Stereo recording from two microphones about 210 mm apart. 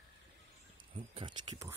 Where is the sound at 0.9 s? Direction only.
25° right (ahead or behind).